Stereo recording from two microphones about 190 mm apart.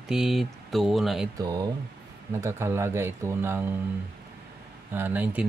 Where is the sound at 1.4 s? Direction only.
20° right (ahead or behind).